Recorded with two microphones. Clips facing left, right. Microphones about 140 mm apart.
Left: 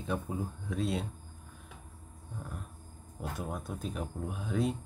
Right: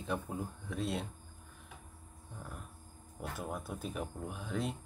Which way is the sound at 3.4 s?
Centre (ahead or behind).